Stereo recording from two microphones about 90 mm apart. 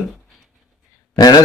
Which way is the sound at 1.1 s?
45° left (ahead or behind).